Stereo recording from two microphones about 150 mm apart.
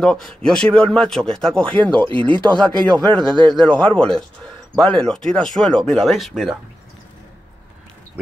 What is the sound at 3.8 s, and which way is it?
A man's voice, 5° left (ahead or behind).